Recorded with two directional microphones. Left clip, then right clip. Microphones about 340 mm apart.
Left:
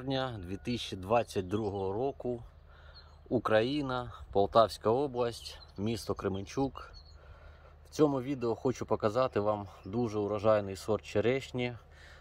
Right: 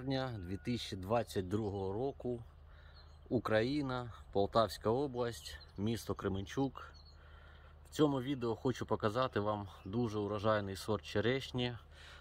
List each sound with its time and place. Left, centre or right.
0.0 s speech: centre
5.3 s speech: centre
6.0 s speech: centre
7.9 s speech: centre
11.5 s a sound: centre